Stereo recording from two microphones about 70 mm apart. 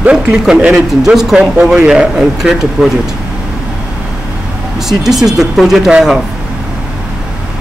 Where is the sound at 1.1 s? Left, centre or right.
Centre.